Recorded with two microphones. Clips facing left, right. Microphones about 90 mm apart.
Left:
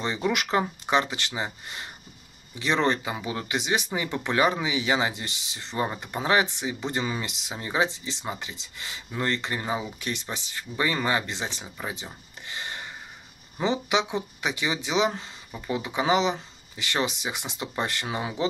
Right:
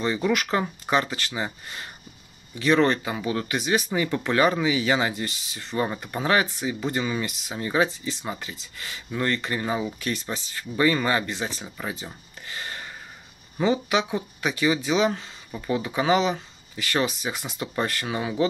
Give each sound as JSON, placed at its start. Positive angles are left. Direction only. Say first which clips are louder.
{"t": 0.0, "sound": "speech", "louder": "right 3 dB", "side_deg": 25}